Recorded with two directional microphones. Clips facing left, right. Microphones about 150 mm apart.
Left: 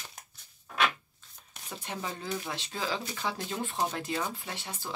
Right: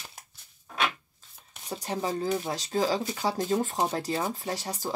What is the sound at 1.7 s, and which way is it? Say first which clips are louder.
Speech: right 7 dB; 35° right (ahead or behind).